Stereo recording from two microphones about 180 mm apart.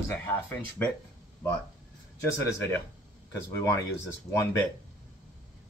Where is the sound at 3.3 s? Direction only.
15° left (ahead or behind).